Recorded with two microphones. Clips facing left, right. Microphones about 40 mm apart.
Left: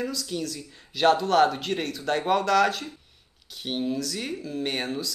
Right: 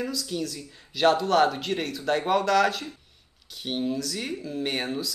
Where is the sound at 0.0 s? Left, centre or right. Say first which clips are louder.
Even; centre.